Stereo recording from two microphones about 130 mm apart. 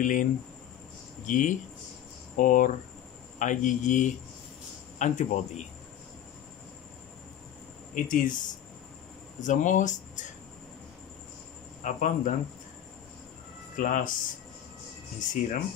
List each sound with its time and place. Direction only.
0.0 s speech: 90° left; by 5.7 s 70° left (ahead or behind)
7.9 s speech: 90° left
9.4 s speech: 75° left (ahead or behind)
11.8 s speech: 80° left
13.7 s speech: 90° left
15.4 s speech: 90° left